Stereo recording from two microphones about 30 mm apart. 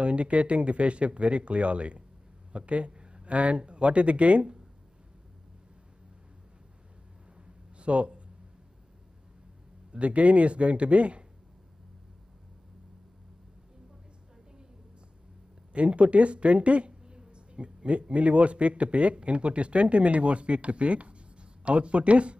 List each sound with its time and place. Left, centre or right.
0.0 s speech: right
7.3 s a sound: right
9.9 s speech: right
15.7 s speech: right
17.0 s a sound: right
18.1 s speech: right